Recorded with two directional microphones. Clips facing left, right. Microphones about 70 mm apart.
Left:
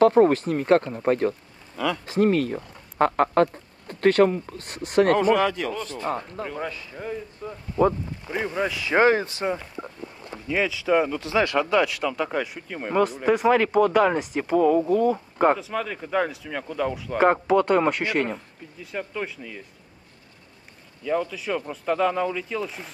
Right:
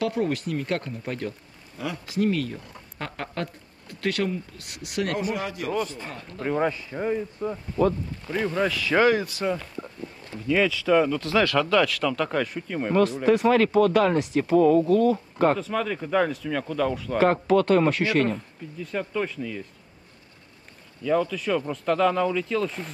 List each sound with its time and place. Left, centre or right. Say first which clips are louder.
0.0 s speech: left 9 dB; left
6.4 s speech: right 6 dB; right
7.7 s speech: left 3 dB; centre
10.5 s speech: right 1 dB; centre
21.0 s speech: right 2 dB; centre